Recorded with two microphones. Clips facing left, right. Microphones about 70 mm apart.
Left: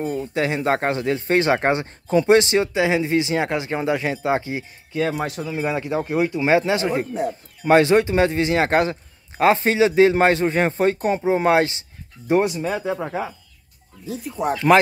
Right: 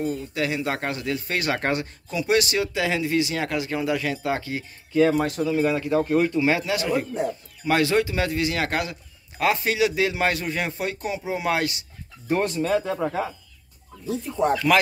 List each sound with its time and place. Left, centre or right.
0.0 s a man's voice: left
12.3 s speech: centre
14.4 s speech: centre